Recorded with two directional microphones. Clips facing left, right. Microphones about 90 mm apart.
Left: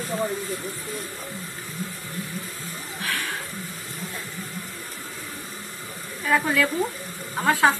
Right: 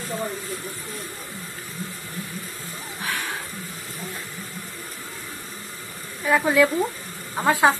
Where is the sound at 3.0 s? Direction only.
20° right (ahead or behind).